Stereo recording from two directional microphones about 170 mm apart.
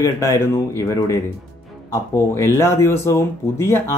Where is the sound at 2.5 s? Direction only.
15° left (ahead or behind).